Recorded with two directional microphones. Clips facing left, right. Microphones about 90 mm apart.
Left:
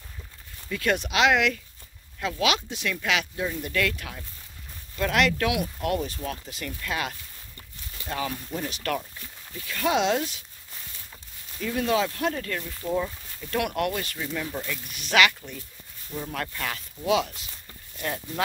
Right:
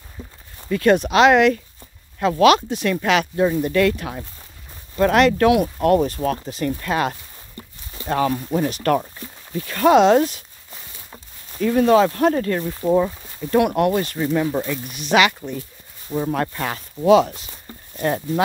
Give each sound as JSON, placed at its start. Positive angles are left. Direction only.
{"t": 0.6, "sound": "speech", "side_deg": -40}
{"t": 8.1, "sound": "speech", "side_deg": -50}
{"t": 16.1, "sound": "speech", "side_deg": -35}